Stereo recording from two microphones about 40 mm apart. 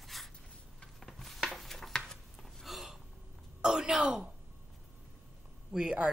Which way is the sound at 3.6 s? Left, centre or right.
Centre.